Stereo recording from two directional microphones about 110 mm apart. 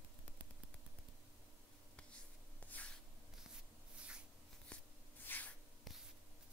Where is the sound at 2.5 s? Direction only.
15° left (ahead or behind).